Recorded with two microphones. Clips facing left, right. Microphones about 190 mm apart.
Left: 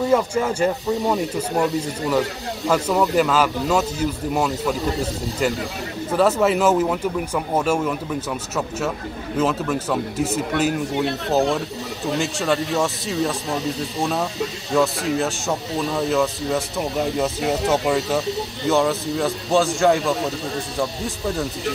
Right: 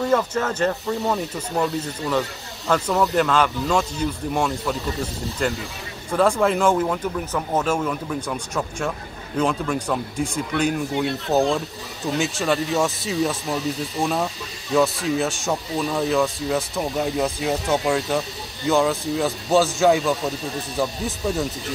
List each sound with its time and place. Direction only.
0.0 s speech: 10° left (ahead or behind)
12.2 s speech: centre (ahead or behind)